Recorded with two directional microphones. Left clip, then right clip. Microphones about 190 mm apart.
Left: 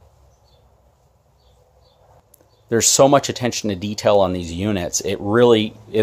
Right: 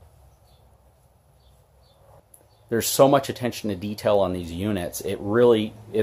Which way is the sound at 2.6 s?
35° left (ahead or behind).